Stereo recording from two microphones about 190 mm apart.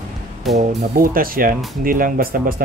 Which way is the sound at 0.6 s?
45° right (ahead or behind).